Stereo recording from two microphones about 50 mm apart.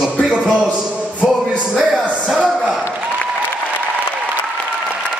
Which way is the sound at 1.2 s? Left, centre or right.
Centre.